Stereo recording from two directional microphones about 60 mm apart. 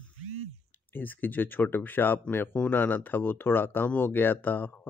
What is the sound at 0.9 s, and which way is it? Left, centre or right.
Speech, left.